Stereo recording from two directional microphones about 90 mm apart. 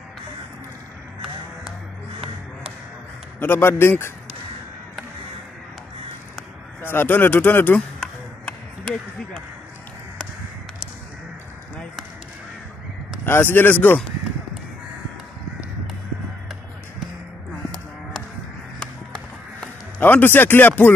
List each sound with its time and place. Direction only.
3.3 s speech: 25° left (ahead or behind)
6.8 s speech: 25° left (ahead or behind)
8.0 s a sound: 15° left (ahead or behind)
13.2 s speech: 25° left (ahead or behind)
18.8 s music: 10° left (ahead or behind)
20.0 s speech: 25° left (ahead or behind)